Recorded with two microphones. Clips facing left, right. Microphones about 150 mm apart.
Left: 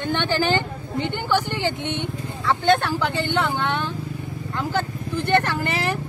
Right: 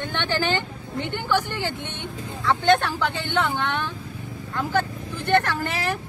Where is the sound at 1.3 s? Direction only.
15° left (ahead or behind).